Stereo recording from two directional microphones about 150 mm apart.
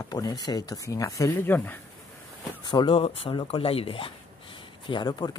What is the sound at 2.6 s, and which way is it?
Speech, 35° left (ahead or behind).